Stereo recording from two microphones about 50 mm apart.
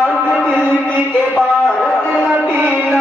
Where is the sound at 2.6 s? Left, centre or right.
Right.